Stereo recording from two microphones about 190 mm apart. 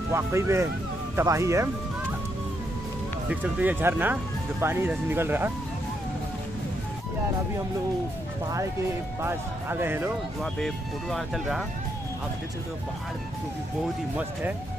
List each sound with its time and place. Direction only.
0.1 s speech: 15° right (ahead or behind)
3.3 s speech: 10° right (ahead or behind)
9.2 s speech: 10° right (ahead or behind)
10.4 s speech: centre (ahead or behind)